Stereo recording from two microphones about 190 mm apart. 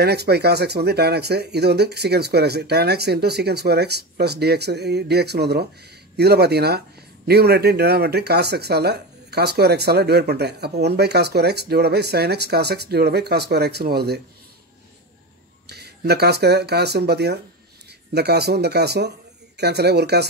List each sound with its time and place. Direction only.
0.0 s speech: 60° right (ahead or behind)
15.7 s speech: 60° right (ahead or behind)